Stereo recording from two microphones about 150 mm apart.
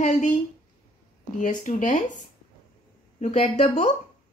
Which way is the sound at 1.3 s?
55° left (ahead or behind).